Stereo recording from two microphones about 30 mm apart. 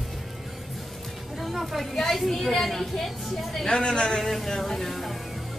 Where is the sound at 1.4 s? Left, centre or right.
Centre.